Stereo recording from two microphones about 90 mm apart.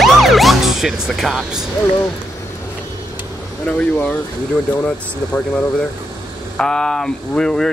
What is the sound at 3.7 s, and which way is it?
Speech, 15° left (ahead or behind).